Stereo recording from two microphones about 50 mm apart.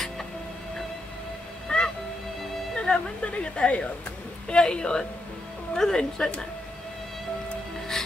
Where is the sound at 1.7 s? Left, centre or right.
Left.